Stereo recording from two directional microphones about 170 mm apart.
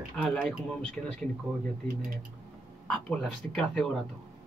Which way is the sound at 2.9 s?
5° left (ahead or behind).